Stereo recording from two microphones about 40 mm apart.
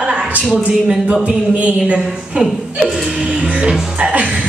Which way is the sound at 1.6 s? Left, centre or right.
Right.